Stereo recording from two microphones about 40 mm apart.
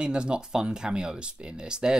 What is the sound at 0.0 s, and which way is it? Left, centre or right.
Speech, right.